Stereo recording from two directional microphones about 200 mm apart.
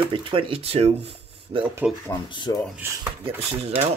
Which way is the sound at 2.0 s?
20° left (ahead or behind).